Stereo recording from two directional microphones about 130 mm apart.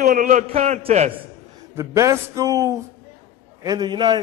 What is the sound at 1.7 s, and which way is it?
A man's voice, 25° right (ahead or behind).